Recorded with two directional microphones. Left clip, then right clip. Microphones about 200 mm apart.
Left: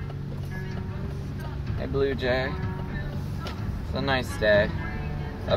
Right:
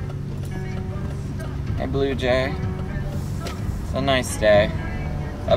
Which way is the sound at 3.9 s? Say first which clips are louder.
Right 6 dB; 20° right (ahead or behind).